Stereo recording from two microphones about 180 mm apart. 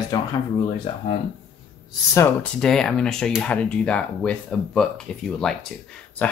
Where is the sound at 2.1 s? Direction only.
15° left (ahead or behind).